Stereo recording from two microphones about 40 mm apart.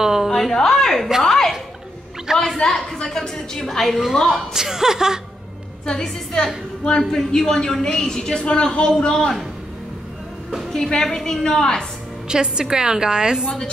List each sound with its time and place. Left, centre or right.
0.0 s a sound: centre
0.3 s a sound: centre
1.2 s chuckle: centre
2.3 s a woman's voice: centre
4.6 s speech: centre
5.9 s a woman's voice: left
8.2 s a woman's voice: left
10.7 s a woman's voice: centre
12.3 s a woman's voice: centre